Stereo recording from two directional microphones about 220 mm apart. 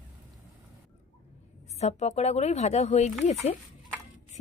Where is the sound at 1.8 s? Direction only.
30° left (ahead or behind).